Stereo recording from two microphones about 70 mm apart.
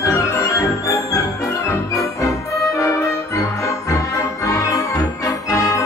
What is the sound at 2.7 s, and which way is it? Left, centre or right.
Music, left.